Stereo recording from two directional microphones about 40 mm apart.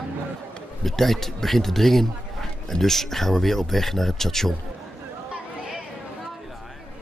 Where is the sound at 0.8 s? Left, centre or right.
Centre.